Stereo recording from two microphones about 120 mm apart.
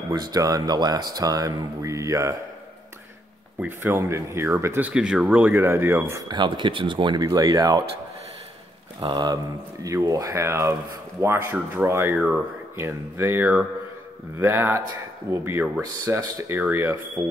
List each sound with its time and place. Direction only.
0.1 s speech: 35° right (ahead or behind)
3.5 s speech: 20° right (ahead or behind)
4.9 s speech: 5° right (ahead or behind)
6.2 s speech: 40° right (ahead or behind)
7.2 s speech: 30° right (ahead or behind)
9.0 s speech: 35° right (ahead or behind)
17.2 s speech: 35° right (ahead or behind)